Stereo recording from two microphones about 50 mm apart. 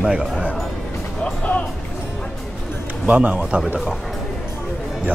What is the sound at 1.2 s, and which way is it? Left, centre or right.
Music, left.